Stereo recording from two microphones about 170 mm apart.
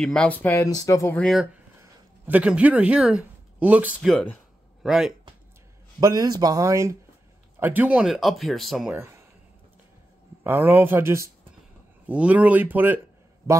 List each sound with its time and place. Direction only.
0.0 s speech: 5° left (ahead or behind)
0.7 s speech: 20° left (ahead or behind)
1.2 s speech: 5° right (ahead or behind)
4.1 s speech: 5° left (ahead or behind)
5.9 s speech: 20° right (ahead or behind); by 8.9 s centre (ahead or behind)
8.9 s speech: 15° right (ahead or behind)
10.4 s speech: 10° right (ahead or behind)